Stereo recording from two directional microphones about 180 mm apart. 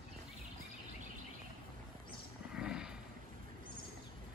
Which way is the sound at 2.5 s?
5° right (ahead or behind).